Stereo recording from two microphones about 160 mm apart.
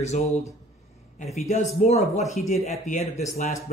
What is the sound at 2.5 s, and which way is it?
Speech, 50° left (ahead or behind).